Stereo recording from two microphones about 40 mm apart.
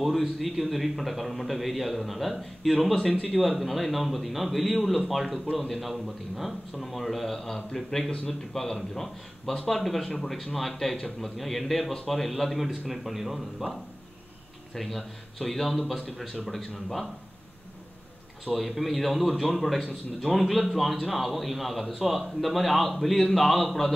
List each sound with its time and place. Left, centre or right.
0.0 s a man's voice: centre
14.8 s a man's voice: centre
18.4 s a man's voice: centre